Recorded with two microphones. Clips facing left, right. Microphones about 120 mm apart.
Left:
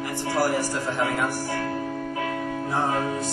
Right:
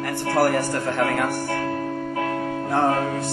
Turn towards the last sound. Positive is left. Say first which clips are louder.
# right 4 dB
turn(degrees=-60)  # may be behind; listen again after turning